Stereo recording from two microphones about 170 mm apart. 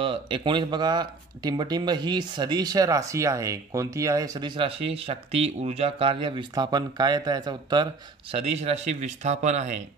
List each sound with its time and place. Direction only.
0.0 s speech: 30° right (ahead or behind)